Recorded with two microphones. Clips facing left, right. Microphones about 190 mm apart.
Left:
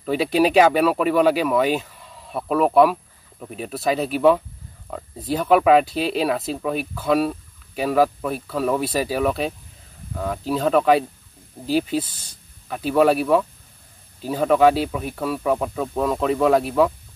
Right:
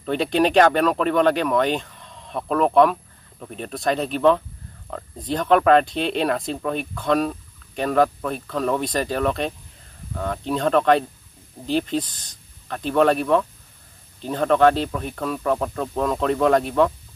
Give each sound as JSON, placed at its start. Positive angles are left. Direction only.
{"t": 0.0, "sound": "speech", "side_deg": 5}